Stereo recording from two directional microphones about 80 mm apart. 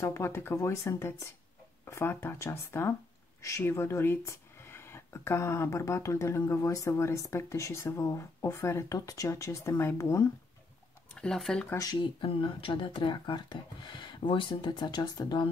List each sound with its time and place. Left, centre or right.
0.0 s speech: left
11.1 s speech: centre
11.8 s speech: left